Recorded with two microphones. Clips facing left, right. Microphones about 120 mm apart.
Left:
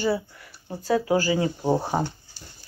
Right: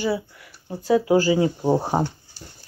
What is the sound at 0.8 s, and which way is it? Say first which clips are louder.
Speech: right 4 dB; 20° right (ahead or behind).